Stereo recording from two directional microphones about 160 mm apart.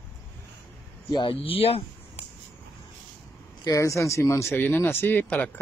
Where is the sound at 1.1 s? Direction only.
30° left (ahead or behind).